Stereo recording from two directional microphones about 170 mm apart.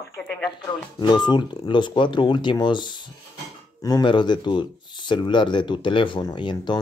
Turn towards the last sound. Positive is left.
turn(degrees=25)  # may be behind; listen again after turning